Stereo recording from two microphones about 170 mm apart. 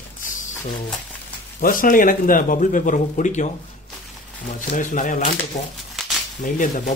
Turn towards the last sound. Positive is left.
turn(degrees=50)  # may be behind; listen again after turning